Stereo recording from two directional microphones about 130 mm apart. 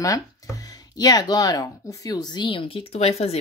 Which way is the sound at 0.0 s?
25° left (ahead or behind).